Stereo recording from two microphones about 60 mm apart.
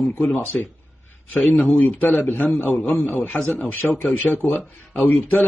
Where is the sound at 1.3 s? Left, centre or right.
Left.